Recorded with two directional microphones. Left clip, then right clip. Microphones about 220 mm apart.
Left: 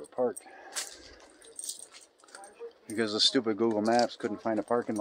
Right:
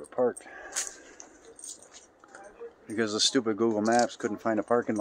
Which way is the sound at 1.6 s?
30° left (ahead or behind).